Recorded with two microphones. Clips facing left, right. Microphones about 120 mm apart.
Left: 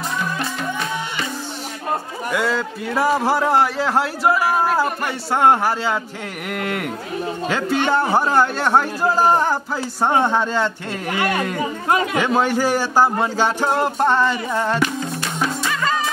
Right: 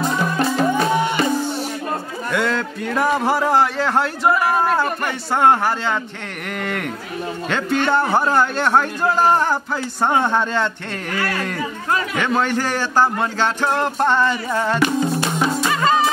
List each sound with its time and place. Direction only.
0.2 s music: 35° right (ahead or behind)
2.3 s a man's voice: 5° left (ahead or behind)
7.4 s a man's voice: 5° left (ahead or behind)
11.1 s speech: 20° left (ahead or behind)
12.2 s speech: 10° left (ahead or behind)
15.7 s music: 25° right (ahead or behind)